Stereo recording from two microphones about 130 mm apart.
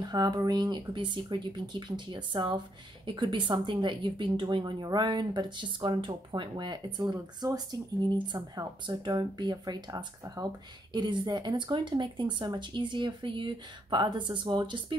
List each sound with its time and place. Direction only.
0.0 s speech: 30° right (ahead or behind)